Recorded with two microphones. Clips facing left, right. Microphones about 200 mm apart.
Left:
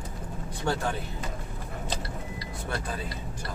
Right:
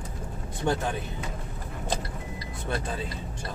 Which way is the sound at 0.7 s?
20° right (ahead or behind).